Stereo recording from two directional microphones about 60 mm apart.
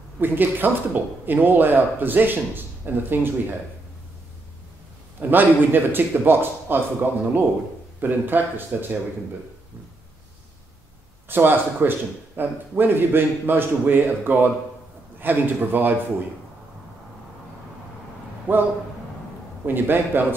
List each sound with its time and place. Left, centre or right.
0.2 s speech: right
5.2 s speech: right
11.2 s speech: right
18.5 s speech: right